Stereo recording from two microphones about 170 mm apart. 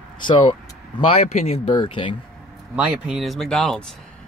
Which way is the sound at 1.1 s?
40° left (ahead or behind).